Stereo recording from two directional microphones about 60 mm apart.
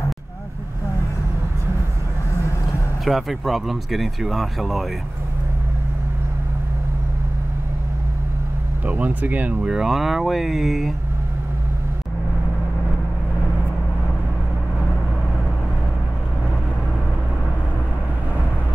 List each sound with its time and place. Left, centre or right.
3.1 s speech: centre
8.8 s speech: right
9.7 s speech: centre